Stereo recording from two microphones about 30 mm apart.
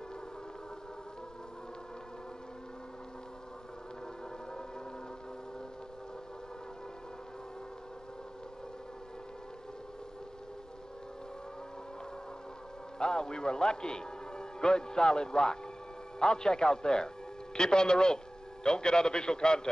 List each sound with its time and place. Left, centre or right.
13.0 s a man's voice: left